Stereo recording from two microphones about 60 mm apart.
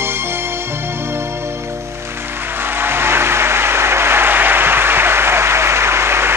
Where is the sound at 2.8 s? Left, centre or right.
Right.